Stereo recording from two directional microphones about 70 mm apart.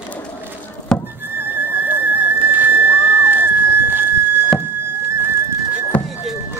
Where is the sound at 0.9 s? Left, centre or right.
Centre.